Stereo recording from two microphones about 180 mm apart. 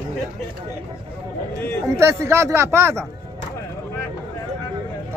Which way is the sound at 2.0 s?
15° right (ahead or behind).